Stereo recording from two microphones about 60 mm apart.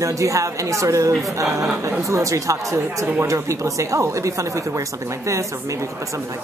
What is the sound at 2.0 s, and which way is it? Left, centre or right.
Speech, right.